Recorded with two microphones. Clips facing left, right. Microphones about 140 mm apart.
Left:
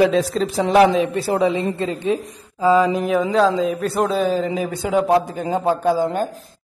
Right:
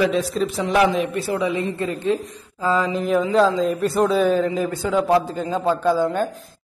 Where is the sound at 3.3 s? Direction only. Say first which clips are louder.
Even; centre (ahead or behind).